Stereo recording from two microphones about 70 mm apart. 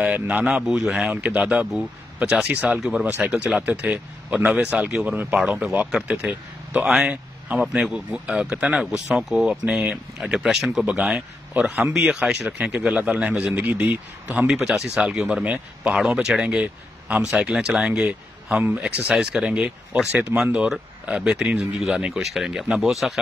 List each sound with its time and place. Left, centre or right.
0.1 s speech: centre
2.5 s speech: right
2.8 s speech: centre
3.2 s speech: right
14.5 s speech: centre
16.0 s speech: centre